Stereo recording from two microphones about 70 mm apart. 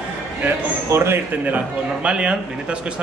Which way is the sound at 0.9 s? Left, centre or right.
Right.